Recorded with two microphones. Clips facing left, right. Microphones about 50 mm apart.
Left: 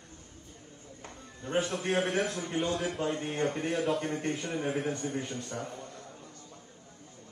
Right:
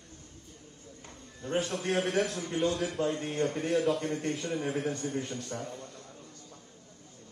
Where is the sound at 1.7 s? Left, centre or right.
Centre.